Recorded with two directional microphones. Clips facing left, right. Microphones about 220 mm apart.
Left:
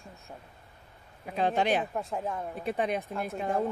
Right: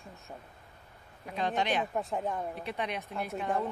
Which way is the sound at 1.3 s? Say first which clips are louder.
Left 4 dB; 40° left (ahead or behind).